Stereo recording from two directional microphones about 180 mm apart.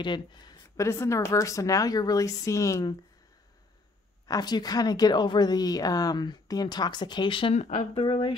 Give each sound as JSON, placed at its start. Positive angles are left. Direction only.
{"t": 0.0, "sound": "speech", "side_deg": 25}
{"t": 4.3, "sound": "a woman's voice", "side_deg": 20}